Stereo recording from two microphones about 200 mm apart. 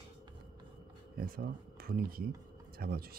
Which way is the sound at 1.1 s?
45° right (ahead or behind).